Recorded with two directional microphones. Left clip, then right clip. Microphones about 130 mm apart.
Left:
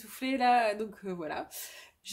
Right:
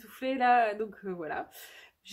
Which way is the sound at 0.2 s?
45° left (ahead or behind).